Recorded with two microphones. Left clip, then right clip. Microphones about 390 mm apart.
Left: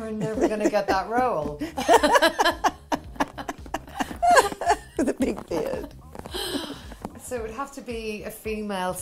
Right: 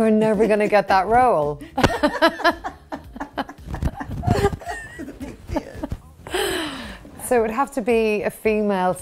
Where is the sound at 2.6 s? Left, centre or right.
Left.